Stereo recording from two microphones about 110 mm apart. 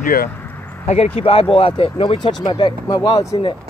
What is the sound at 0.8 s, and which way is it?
Speech, 75° left (ahead or behind).